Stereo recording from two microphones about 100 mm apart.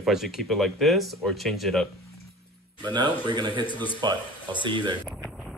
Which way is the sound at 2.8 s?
45° right (ahead or behind).